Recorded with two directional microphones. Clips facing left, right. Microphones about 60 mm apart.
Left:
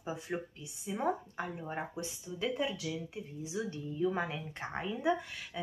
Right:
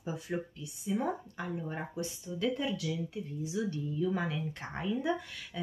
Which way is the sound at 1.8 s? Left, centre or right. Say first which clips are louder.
Right 1 dB; centre.